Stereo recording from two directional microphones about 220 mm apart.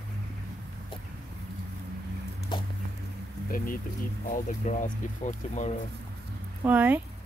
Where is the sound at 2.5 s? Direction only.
20° left (ahead or behind).